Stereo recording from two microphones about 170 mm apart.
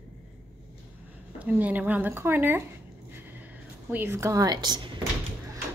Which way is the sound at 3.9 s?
15° right (ahead or behind).